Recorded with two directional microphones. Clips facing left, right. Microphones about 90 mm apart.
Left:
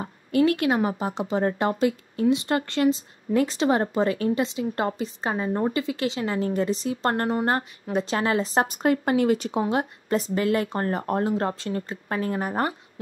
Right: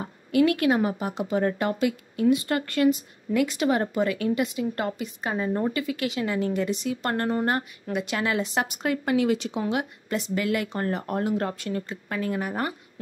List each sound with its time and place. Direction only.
0.3 s a woman's voice: 35° left (ahead or behind)
9.6 s a woman's voice: 35° left (ahead or behind)